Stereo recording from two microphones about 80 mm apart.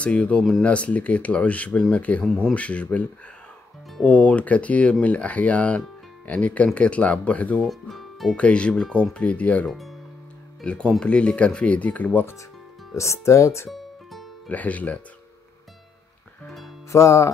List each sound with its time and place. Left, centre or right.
0.0 s speech: centre
7.6 s speech: centre
8.4 s speech: centre
9.7 s speech: centre
10.6 s speech: centre
12.9 s speech: left
13.7 s music: centre
14.5 s speech: centre
16.9 s speech: left